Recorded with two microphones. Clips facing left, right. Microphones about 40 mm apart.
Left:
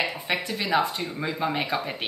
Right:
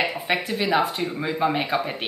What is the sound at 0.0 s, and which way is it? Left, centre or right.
Speech, centre.